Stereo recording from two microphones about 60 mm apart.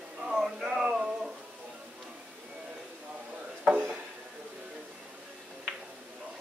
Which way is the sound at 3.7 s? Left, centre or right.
Right.